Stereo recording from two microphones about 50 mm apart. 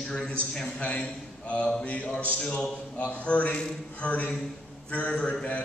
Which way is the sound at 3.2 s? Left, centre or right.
Left.